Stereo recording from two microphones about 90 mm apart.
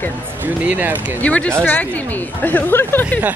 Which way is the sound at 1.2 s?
15° left (ahead or behind).